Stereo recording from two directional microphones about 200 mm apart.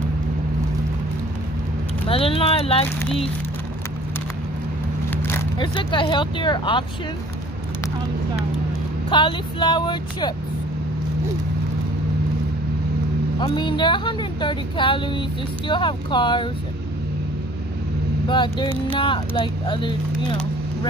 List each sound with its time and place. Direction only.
2.0 s speech: 30° left (ahead or behind)
5.1 s vehicle: 10° left (ahead or behind)
5.6 s speech: 25° left (ahead or behind)
9.1 s speech: 25° left (ahead or behind)
13.4 s speech: 25° left (ahead or behind)
18.3 s speech: 25° left (ahead or behind)